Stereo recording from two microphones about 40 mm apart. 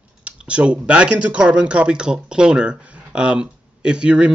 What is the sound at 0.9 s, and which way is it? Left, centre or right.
Speech, right.